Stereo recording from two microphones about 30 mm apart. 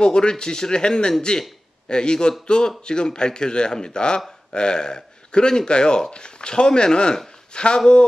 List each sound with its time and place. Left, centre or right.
0.0 s speech: left